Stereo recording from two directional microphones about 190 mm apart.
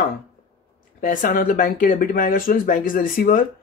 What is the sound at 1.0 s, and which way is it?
Speech, 45° left (ahead or behind).